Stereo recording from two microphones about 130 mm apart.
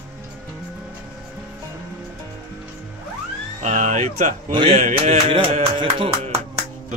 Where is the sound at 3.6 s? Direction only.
70° right (ahead or behind).